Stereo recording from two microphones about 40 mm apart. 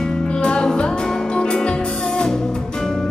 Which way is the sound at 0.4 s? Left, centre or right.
Left.